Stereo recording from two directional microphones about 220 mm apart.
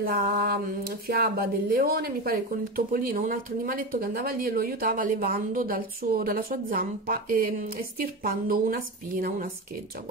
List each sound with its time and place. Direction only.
0.0 s speech: 45° right (ahead or behind)